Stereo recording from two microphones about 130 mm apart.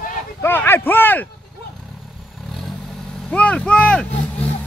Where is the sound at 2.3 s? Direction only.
Centre (ahead or behind).